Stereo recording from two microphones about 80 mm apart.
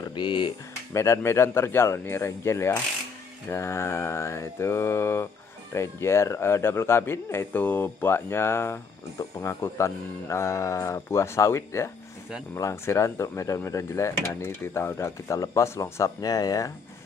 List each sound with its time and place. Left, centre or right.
0.1 s speech: left
0.9 s mantra: left
16.2 s speech: left